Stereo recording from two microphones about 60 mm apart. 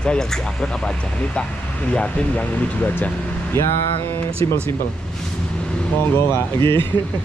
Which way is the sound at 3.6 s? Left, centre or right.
Left.